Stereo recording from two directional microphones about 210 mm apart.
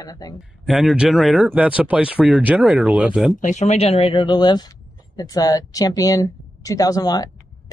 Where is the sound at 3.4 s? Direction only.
35° left (ahead or behind).